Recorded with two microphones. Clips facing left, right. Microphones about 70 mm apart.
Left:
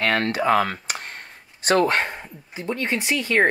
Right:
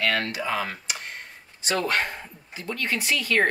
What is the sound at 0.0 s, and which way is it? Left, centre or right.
Speech, left.